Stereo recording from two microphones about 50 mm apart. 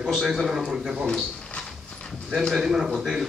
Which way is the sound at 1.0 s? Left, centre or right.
Centre.